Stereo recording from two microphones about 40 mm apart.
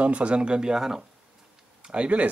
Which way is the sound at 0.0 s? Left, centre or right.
Right.